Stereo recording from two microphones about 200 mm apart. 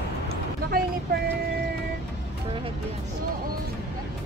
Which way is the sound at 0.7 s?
50° right (ahead or behind).